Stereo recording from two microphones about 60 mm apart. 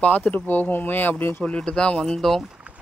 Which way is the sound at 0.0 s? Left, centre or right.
Left.